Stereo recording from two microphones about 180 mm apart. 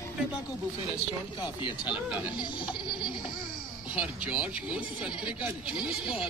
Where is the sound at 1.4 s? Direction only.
25° left (ahead or behind).